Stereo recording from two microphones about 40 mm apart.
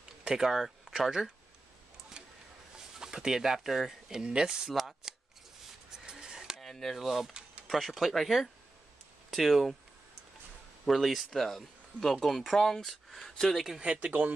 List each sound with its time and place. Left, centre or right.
0.2 s speech: centre
2.2 s a sound: right
3.0 s speech: centre
4.2 s speech: centre
4.7 s chopping: centre
5.9 s a sound: centre
6.6 s a sound: centre
7.0 s speech: centre
10.9 s speech: centre
13.9 s speech: right